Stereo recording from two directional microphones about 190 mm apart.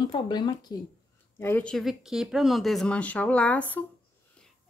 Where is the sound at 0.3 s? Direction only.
20° left (ahead or behind).